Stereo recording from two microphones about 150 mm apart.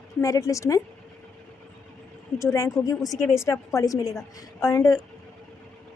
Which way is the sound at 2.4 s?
20° left (ahead or behind).